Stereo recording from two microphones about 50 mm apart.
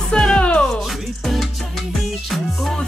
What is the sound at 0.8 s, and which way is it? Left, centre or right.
Music, centre.